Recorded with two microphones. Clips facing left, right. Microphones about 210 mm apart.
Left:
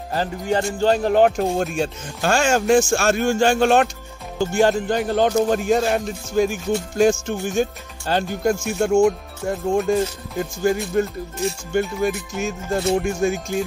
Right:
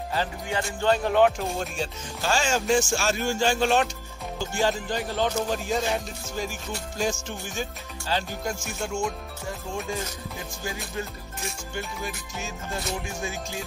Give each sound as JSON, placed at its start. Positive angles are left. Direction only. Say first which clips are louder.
{"t": 0.1, "sound": "speech", "louder": "left 8 dB", "side_deg": 45}